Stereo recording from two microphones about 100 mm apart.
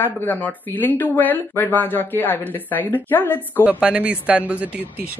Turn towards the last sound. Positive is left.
turn(degrees=-15)  # may be behind; listen again after turning